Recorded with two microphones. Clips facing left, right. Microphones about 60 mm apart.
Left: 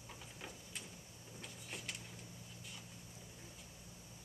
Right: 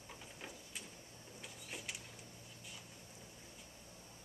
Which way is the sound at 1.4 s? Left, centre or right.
Centre.